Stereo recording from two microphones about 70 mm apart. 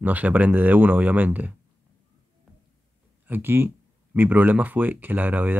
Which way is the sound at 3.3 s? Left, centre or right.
Right.